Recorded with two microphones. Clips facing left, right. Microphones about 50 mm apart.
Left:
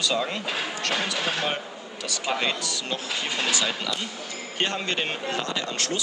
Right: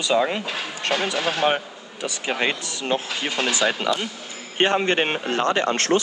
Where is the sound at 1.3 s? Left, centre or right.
Right.